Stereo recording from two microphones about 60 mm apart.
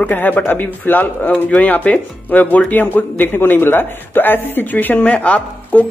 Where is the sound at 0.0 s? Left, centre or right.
Left.